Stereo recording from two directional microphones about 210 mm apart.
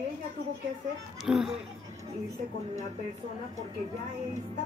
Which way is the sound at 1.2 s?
Centre (ahead or behind).